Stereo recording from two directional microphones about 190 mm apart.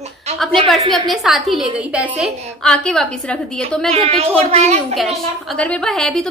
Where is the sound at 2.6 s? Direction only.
5° left (ahead or behind).